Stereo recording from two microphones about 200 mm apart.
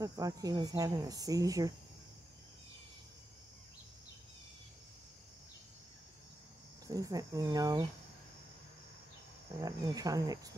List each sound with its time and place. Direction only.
0.0 s speech: 15° right (ahead or behind)
6.9 s speech: 15° right (ahead or behind)
9.6 s speech: 15° right (ahead or behind)